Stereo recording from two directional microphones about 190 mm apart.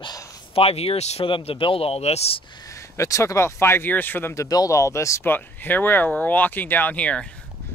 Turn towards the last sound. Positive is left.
turn(degrees=5)  # may be behind; listen again after turning